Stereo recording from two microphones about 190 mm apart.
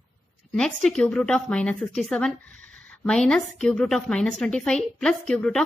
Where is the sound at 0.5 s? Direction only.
5° left (ahead or behind).